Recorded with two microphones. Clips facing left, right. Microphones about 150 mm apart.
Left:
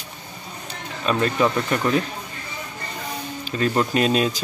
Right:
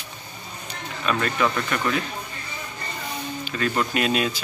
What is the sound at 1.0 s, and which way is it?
Speech, 30° left (ahead or behind).